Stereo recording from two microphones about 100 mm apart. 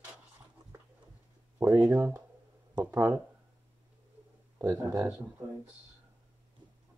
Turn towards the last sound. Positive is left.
turn(degrees=-30)  # may be behind; listen again after turning